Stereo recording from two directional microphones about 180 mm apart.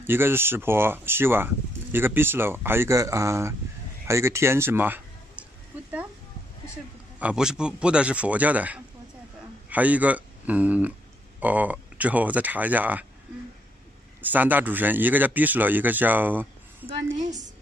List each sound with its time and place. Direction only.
0.0 s a man's voice: 10° right (ahead or behind)
7.2 s speech: 5° right (ahead or behind)
14.2 s speech: 10° right (ahead or behind)
16.8 s a sound: 40° right (ahead or behind)